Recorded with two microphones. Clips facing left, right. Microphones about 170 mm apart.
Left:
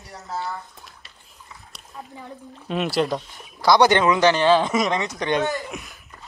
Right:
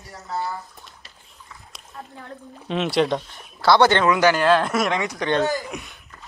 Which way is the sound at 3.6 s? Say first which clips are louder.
Even; 15° left (ahead or behind).